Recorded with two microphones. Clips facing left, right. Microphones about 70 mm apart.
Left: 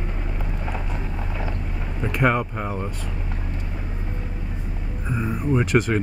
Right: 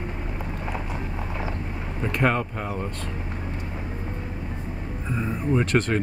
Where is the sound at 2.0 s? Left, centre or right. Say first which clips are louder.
Left 2 dB; centre.